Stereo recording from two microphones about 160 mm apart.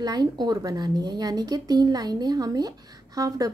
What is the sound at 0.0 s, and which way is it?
A woman's voice, 25° right (ahead or behind).